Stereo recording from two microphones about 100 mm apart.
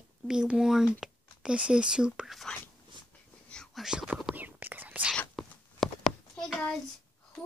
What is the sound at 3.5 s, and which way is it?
Whispering, 5° left (ahead or behind).